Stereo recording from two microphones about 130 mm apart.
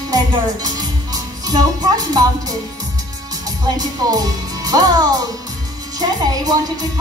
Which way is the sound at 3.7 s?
30° right (ahead or behind).